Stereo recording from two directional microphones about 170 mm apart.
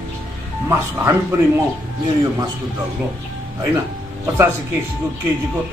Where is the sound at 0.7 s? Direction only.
15° right (ahead or behind).